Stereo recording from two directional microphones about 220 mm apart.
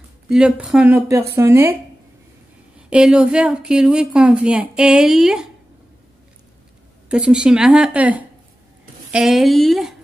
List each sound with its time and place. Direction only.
0.3 s a woman's voice: 5° right (ahead or behind)
2.9 s a woman's voice: 5° right (ahead or behind)
7.1 s a woman's voice: 5° right (ahead or behind)